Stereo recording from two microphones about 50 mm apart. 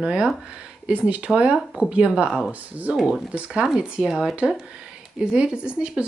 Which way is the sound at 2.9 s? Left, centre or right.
Centre.